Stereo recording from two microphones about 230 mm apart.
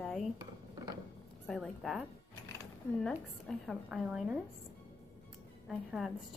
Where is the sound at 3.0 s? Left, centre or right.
Centre.